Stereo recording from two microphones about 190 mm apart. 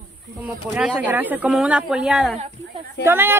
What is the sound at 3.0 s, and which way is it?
Speech, 10° right (ahead or behind).